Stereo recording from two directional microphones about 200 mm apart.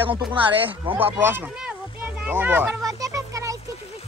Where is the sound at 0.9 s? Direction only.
10° right (ahead or behind).